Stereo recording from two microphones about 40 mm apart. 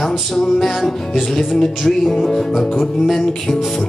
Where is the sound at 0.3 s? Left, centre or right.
Centre.